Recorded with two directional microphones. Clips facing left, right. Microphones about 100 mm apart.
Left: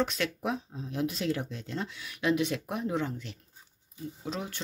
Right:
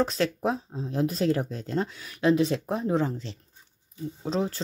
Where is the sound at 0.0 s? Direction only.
35° right (ahead or behind).